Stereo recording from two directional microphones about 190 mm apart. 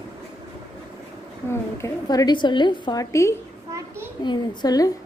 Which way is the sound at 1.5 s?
15° left (ahead or behind).